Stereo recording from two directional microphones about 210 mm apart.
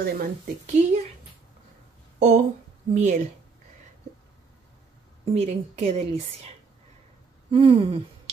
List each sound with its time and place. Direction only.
0.0 s speech: 35° right (ahead or behind)
2.1 s speech: 35° right (ahead or behind)
5.3 s speech: 30° right (ahead or behind)
7.5 s a sound: 25° right (ahead or behind)